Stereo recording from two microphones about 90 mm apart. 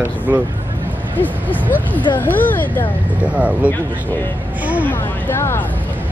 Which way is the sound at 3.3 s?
15° right (ahead or behind).